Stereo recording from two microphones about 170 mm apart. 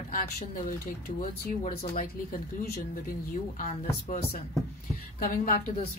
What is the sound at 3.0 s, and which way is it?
Speech, 50° left (ahead or behind).